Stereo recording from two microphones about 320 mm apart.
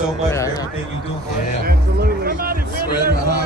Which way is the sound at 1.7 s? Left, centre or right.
Right.